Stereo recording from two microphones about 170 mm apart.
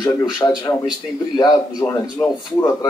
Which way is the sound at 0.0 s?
25° left (ahead or behind).